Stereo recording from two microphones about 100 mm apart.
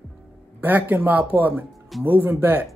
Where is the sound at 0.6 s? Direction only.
20° right (ahead or behind).